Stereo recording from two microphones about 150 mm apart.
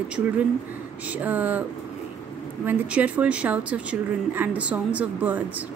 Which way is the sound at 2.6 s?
10° right (ahead or behind).